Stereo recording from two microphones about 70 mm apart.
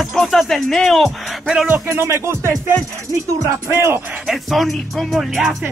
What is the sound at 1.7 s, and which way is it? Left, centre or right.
Speech, right.